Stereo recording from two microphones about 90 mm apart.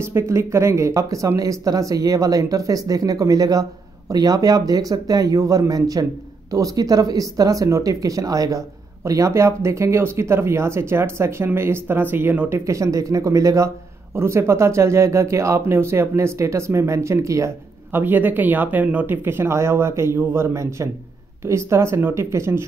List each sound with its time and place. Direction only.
0.0 s speech: 30° right (ahead or behind)
17.9 s speech: 20° right (ahead or behind)
19.2 s speech: 30° right (ahead or behind)